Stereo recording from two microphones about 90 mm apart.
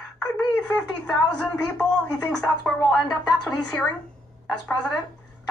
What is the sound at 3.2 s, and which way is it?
Speech, 50° left (ahead or behind).